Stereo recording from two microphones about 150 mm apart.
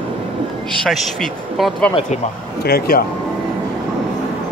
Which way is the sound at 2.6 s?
90° left.